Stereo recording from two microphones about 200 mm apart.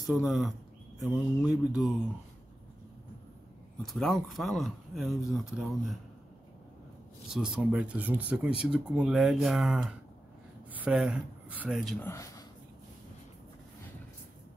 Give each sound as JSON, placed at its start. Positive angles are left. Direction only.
{"t": 0.0, "sound": "speech", "side_deg": 0}
{"t": 3.8, "sound": "speech", "side_deg": 0}
{"t": 7.3, "sound": "speech", "side_deg": -5}
{"t": 12.1, "sound": "speech", "side_deg": 15}